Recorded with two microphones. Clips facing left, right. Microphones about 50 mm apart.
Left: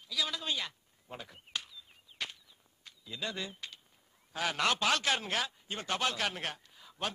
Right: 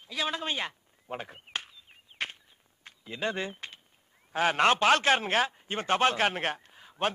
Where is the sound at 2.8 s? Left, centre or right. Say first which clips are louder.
Right 7 dB; right.